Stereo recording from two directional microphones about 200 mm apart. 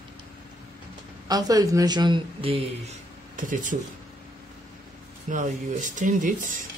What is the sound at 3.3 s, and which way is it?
Speech, 40° right (ahead or behind).